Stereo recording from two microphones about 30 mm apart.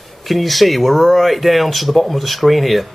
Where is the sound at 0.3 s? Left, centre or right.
Centre.